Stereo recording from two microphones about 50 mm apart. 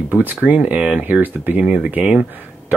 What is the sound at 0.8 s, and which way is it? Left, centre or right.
Speech, centre.